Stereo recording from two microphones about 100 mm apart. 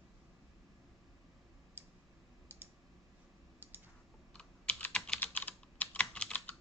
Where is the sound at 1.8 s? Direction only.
20° right (ahead or behind).